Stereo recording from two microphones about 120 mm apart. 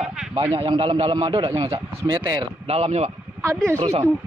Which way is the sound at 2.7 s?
60° right (ahead or behind).